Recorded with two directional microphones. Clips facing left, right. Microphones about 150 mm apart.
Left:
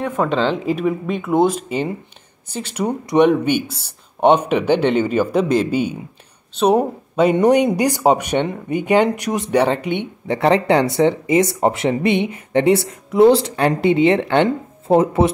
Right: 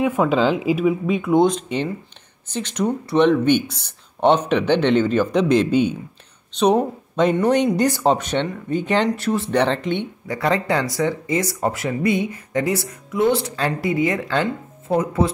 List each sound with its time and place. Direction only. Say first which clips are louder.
0.0 s speech: right 1 dB; 5° right (ahead or behind); by 10.0 s 10° left (ahead or behind)
10.2 s speech: left 7 dB; 25° left (ahead or behind)
13.6 s speech: left 6 dB; 20° left (ahead or behind)